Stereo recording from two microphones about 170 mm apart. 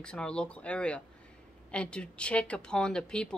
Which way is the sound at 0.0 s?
5° left (ahead or behind).